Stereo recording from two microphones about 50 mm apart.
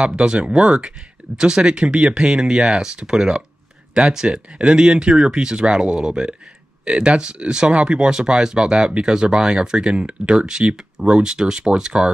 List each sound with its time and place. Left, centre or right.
0.0 s speech: centre